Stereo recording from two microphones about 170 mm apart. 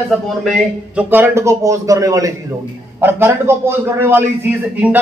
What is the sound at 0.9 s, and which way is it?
A man's voice, 15° right (ahead or behind).